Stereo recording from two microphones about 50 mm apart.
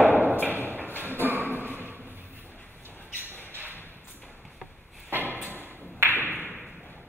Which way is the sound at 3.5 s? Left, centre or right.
Right.